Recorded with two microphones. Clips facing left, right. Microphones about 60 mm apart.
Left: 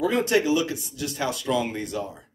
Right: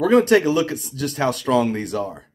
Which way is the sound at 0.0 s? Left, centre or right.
Right.